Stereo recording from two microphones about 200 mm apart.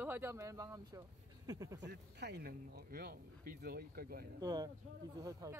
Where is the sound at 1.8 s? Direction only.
60° right (ahead or behind).